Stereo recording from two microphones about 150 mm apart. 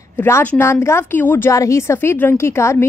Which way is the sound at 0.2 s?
15° left (ahead or behind).